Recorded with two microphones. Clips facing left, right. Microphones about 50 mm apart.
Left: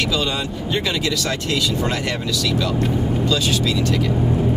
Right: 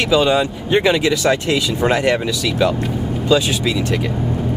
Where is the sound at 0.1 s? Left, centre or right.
Centre.